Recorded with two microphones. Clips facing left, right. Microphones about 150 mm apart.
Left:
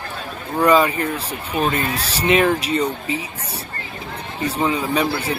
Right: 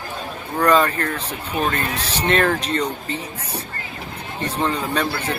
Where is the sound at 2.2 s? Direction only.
10° left (ahead or behind).